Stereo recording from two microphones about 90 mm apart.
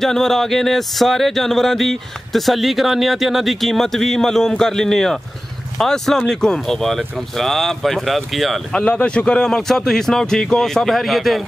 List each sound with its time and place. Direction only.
0.0 s speech: 5° left (ahead or behind)